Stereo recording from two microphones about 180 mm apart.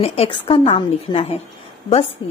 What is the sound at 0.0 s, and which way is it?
A woman's voice, 35° left (ahead or behind).